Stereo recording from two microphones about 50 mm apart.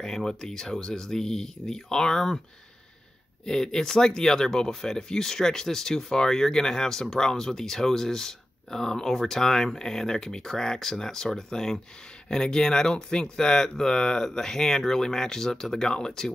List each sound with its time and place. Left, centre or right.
0.0 s speech: centre
3.4 s speech: centre